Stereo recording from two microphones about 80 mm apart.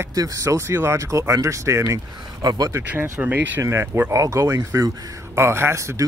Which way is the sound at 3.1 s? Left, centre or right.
Right.